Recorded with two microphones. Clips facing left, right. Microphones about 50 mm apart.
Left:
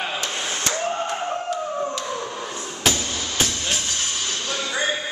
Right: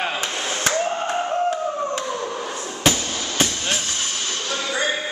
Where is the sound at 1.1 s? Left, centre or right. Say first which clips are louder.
Right 4 dB; centre.